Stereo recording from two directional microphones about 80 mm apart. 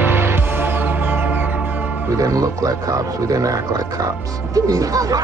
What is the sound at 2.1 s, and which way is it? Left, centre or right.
Speech, right.